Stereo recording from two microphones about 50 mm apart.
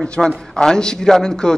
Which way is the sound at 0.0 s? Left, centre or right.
Centre.